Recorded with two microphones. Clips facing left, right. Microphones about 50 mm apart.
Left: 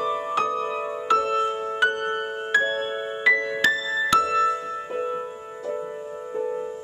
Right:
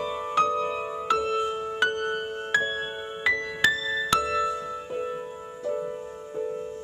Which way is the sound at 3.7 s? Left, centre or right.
Centre.